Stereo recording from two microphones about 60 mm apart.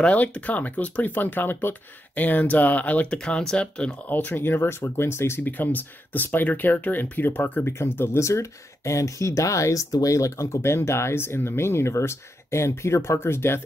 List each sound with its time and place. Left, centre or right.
0.0 s speech: left
4.1 s speech: left
5.4 s speech: left
8.0 s speech: left